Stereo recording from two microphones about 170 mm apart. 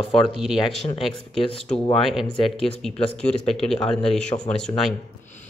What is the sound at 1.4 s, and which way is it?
Speech, 30° left (ahead or behind).